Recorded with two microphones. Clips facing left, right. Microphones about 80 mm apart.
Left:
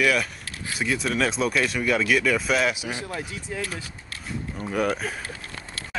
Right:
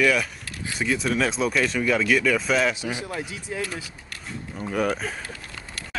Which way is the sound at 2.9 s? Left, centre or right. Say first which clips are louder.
Right 1 dB; right.